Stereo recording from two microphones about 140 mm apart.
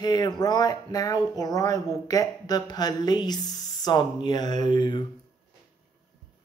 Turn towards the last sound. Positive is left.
turn(degrees=35)  # may be behind; listen again after turning